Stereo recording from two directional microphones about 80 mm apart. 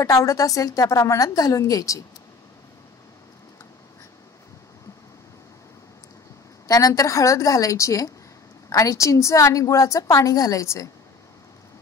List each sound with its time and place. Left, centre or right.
0.0 s a woman's voice: left
6.7 s a woman's voice: left